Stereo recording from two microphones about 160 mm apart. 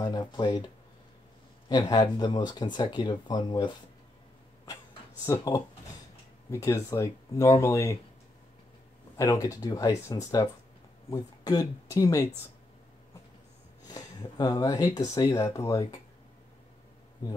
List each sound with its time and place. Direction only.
0.0 s speech: 25° left (ahead or behind)
1.7 s speech: 25° left (ahead or behind)
5.2 s speech: 20° left (ahead or behind)
9.1 s speech: 20° left (ahead or behind)
13.8 s speech: 25° left (ahead or behind)